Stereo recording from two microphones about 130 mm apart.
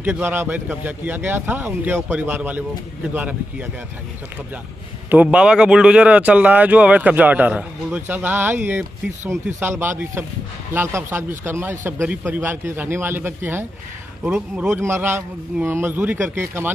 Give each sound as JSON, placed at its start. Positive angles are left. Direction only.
{"t": 0.0, "sound": "a man's voice", "side_deg": -15}
{"t": 5.1, "sound": "a man's voice", "side_deg": -10}
{"t": 14.7, "sound": "a man's voice", "side_deg": -20}